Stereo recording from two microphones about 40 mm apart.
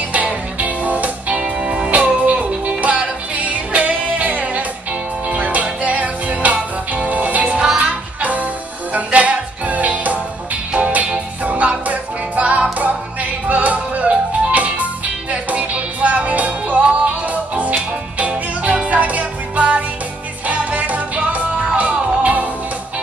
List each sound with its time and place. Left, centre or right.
0.6 s music: right
1.3 s music: right